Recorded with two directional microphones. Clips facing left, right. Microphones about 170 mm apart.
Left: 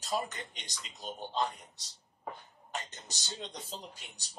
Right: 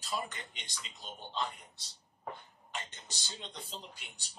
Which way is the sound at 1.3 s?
40° left (ahead or behind).